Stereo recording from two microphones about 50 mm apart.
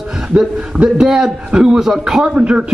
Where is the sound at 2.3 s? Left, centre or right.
Right.